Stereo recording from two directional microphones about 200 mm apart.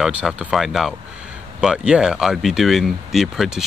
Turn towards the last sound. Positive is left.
turn(degrees=0)  # may be behind; listen again after turning